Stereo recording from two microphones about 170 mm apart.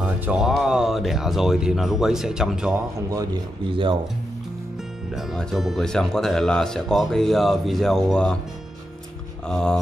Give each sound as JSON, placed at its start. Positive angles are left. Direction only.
{"t": 0.2, "sound": "speech", "side_deg": -5}
{"t": 3.7, "sound": "speech", "side_deg": -30}
{"t": 5.1, "sound": "speech", "side_deg": 0}
{"t": 9.5, "sound": "speech", "side_deg": 5}